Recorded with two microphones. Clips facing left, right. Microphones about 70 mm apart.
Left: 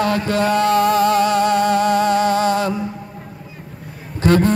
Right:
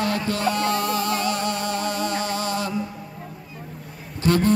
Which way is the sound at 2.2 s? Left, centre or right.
Left.